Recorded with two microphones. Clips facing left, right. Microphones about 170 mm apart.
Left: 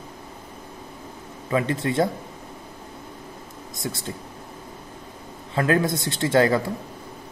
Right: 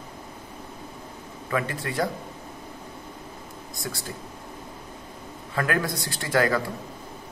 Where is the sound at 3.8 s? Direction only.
25° left (ahead or behind).